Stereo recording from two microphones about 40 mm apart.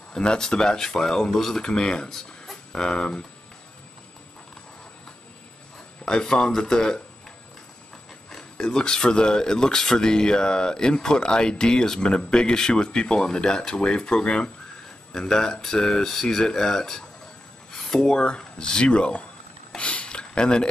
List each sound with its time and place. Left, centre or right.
0.1 s speech: centre
2.0 s speech: centre
2.5 s speech: centre
6.0 s speech: centre
8.5 s speech: centre
19.8 s a sound: left
20.2 s a sound: left